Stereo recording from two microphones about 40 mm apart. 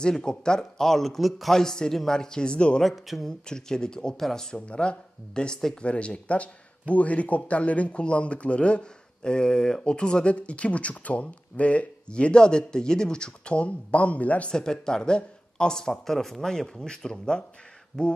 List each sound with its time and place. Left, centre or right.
0.2 s speech: centre
4.6 s speech: left
14.5 s speech: centre